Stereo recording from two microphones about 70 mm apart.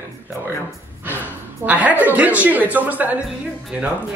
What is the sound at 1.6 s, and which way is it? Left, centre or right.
Speech, right.